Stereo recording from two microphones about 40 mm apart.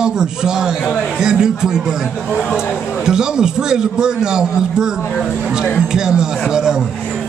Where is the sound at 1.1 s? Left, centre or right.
Centre.